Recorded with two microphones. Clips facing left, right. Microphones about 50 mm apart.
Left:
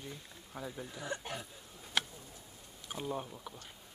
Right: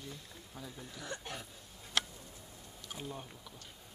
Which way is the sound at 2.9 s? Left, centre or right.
Centre.